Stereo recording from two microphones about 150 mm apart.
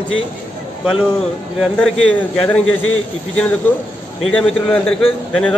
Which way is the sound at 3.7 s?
15° left (ahead or behind).